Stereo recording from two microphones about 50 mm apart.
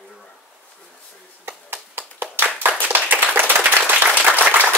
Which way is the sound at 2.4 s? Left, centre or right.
Right.